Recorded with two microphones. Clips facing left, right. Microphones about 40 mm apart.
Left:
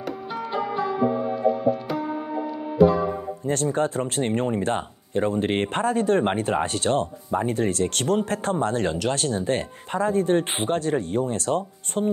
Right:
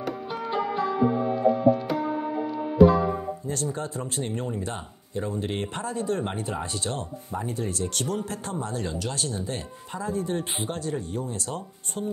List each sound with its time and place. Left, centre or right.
0.0 s music: centre
3.4 s speech: left